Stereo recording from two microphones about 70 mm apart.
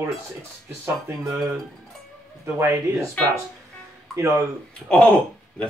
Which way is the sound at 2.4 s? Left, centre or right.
Right.